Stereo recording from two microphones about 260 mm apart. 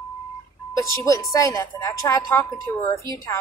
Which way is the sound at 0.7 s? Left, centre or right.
Centre.